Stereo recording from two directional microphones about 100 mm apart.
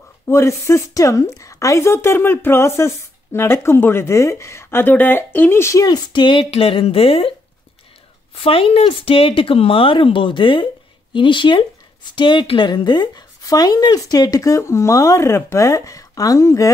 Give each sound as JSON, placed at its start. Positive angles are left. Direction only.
{"t": 0.3, "sound": "a woman's voice", "side_deg": 30}
{"t": 5.9, "sound": "speech", "side_deg": 45}
{"t": 6.5, "sound": "speech", "side_deg": 70}
{"t": 8.4, "sound": "speech", "side_deg": 70}